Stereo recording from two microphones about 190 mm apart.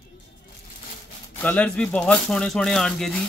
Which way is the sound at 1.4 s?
10° left (ahead or behind).